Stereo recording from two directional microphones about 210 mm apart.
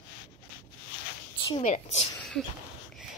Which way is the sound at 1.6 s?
35° left (ahead or behind).